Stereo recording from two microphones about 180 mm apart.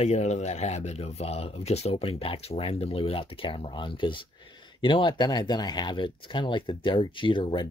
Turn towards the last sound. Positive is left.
turn(degrees=30)  # may be behind; listen again after turning